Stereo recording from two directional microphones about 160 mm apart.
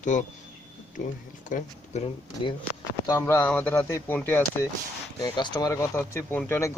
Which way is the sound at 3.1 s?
15° left (ahead or behind).